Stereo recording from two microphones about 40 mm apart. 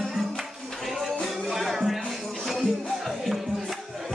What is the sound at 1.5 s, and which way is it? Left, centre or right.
Music, centre.